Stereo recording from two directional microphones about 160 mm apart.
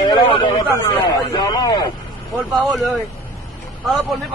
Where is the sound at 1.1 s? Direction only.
25° left (ahead or behind).